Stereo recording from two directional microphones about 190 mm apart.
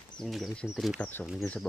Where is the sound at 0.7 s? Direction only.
Centre (ahead or behind).